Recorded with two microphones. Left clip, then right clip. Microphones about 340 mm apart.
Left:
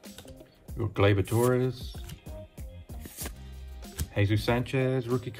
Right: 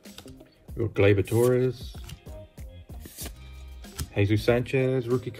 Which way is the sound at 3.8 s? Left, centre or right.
Centre.